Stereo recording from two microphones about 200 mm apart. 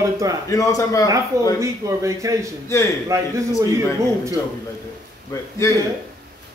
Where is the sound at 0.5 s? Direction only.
15° left (ahead or behind).